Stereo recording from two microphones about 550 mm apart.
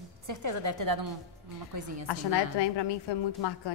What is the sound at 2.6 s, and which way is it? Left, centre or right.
A woman's voice, left.